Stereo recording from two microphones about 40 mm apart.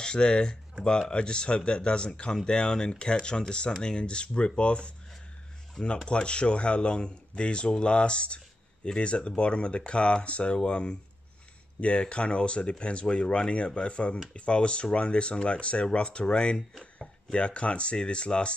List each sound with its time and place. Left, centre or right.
0.0 s speech: left